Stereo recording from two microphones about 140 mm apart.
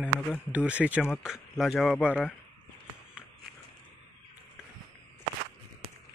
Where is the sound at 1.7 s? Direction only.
10° left (ahead or behind).